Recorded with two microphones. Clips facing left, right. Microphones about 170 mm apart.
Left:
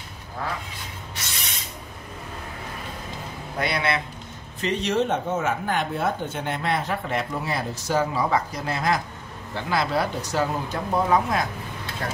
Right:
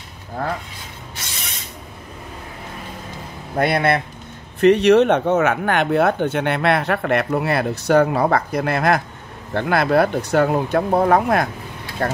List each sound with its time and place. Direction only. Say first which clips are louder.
3.5 s speech: right 8 dB; 50° right (ahead or behind)
4.6 s speech: right 12 dB; 65° right (ahead or behind)